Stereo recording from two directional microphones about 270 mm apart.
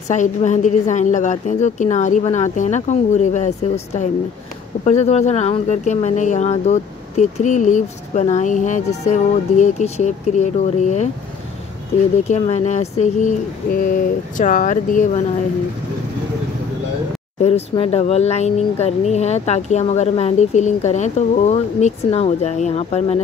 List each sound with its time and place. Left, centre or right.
0.1 s speech: left
12.3 s speech: left
17.4 s speech: left